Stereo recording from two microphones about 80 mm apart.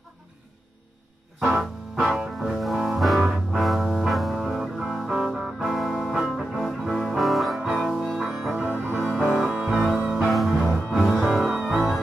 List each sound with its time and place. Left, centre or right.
1.4 s music: centre
8.2 s music: centre
8.9 s music: centre